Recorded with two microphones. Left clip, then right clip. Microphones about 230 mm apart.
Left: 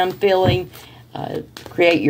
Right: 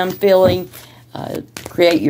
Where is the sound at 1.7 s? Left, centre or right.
Right.